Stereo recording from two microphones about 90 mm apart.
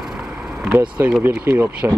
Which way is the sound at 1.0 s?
30° right (ahead or behind).